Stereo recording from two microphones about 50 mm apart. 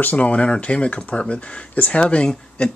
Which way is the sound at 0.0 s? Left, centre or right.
Left.